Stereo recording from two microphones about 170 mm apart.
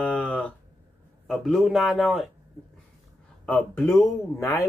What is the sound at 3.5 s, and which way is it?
Speech, 10° left (ahead or behind).